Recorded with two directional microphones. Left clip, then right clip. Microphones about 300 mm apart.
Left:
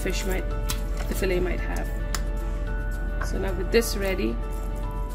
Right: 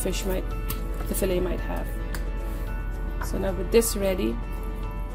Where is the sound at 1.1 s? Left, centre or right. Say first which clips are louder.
Even; centre.